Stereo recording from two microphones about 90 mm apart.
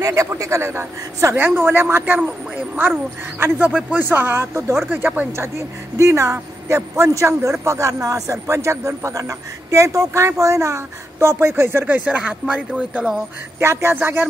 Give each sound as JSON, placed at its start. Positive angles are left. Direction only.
{"t": 0.0, "sound": "speech", "side_deg": -35}
{"t": 13.6, "sound": "speech", "side_deg": -30}